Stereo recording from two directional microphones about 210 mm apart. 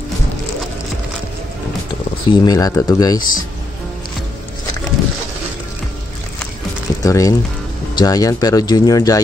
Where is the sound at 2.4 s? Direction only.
15° left (ahead or behind).